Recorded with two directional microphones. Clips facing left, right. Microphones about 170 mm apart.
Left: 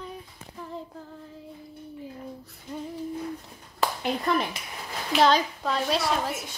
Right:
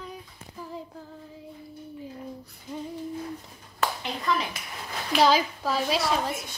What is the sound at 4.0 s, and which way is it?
Clapping, 50° left (ahead or behind).